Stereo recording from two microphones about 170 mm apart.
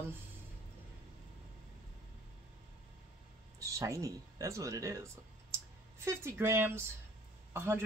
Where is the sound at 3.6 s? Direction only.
20° right (ahead or behind).